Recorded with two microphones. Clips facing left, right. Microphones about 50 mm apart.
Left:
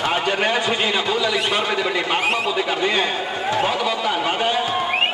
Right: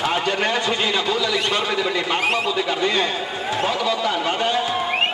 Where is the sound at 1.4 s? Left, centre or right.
Centre.